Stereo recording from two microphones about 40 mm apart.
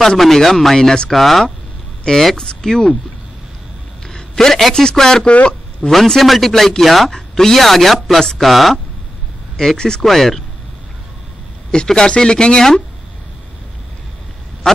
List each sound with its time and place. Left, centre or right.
0.2 s speech: centre
0.7 s speech: centre
1.1 s speech: centre
2.0 s speech: centre
4.1 s a sound: centre
4.7 s speech: centre
5.2 s speech: left
5.9 s speech: centre
9.8 s speech: centre
10.0 s speech: centre
11.7 s speech: left